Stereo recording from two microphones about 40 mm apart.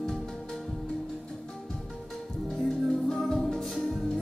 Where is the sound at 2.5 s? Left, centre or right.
Centre.